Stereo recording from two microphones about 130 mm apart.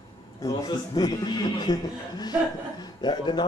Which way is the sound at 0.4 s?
25° left (ahead or behind).